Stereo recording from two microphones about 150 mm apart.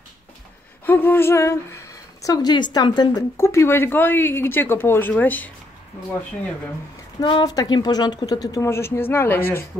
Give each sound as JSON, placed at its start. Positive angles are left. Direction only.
{"t": 0.8, "sound": "speech", "side_deg": 15}
{"t": 3.3, "sound": "speech", "side_deg": 15}
{"t": 7.2, "sound": "speech", "side_deg": 30}